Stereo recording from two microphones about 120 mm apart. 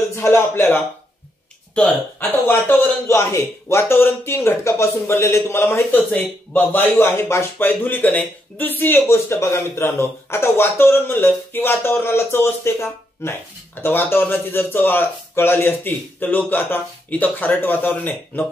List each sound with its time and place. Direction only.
0.1 s a man's voice: 20° left (ahead or behind)